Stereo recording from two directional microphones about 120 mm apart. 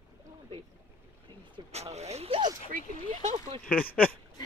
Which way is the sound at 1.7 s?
65° right (ahead or behind).